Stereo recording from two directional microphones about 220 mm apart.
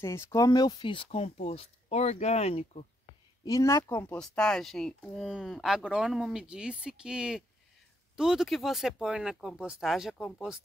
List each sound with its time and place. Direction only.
0.0 s speech: 15° left (ahead or behind)
3.4 s speech: 15° left (ahead or behind)